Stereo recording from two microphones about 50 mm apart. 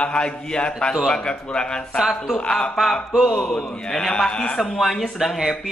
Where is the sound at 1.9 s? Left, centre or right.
Centre.